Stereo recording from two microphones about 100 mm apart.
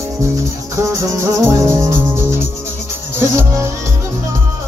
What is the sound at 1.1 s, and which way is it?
Music, 25° right (ahead or behind).